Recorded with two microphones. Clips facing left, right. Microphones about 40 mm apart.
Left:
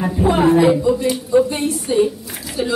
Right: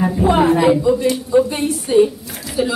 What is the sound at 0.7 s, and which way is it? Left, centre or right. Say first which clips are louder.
A man's voice: right 2 dB; centre.